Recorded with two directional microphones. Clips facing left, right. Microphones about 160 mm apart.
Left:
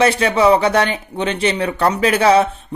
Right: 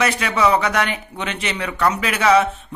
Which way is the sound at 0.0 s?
30° left (ahead or behind).